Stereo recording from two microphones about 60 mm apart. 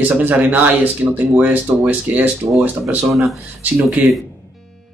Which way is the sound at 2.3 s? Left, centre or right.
Centre.